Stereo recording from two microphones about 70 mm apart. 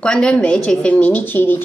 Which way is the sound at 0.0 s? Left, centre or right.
Centre.